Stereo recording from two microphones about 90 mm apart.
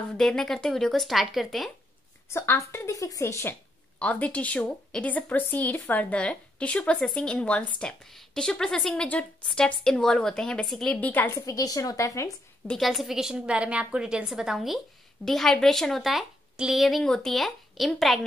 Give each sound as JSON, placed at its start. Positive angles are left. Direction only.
{"t": 0.2, "sound": "a woman's voice", "side_deg": 5}
{"t": 2.3, "sound": "speech", "side_deg": 30}
{"t": 4.0, "sound": "a woman's voice", "side_deg": 15}
{"t": 11.0, "sound": "a woman's voice", "side_deg": 20}
{"t": 11.3, "sound": "speech", "side_deg": 40}
{"t": 12.6, "sound": "a woman's voice", "side_deg": 0}